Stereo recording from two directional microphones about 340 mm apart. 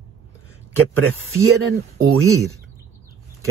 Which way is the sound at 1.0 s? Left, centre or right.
Right.